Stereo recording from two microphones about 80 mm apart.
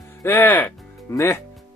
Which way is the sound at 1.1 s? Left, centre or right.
Left.